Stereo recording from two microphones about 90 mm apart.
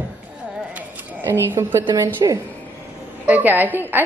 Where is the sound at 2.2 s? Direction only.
50° right (ahead or behind).